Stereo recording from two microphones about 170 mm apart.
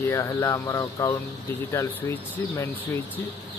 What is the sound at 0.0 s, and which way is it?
Speech, 15° left (ahead or behind).